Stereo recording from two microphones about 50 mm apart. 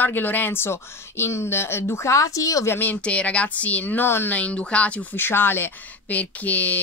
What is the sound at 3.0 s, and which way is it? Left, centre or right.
Speech, left.